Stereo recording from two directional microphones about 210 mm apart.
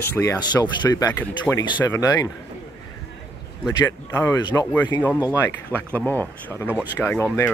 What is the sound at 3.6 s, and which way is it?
Speech, 15° left (ahead or behind).